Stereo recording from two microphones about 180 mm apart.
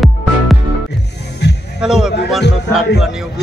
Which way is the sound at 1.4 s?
70° left (ahead or behind).